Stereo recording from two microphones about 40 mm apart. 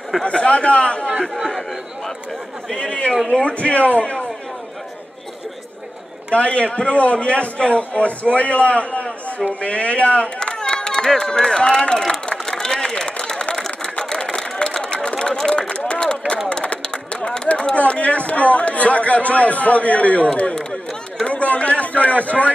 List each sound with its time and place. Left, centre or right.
0.2 s a man's voice: left
2.7 s a man's voice: left
6.3 s a man's voice: left; by 11.8 s centre
12.4 s a sound: centre
15.5 s run: left
16.0 s a sound: left
16.4 s speech: left
21.3 s a man's voice: left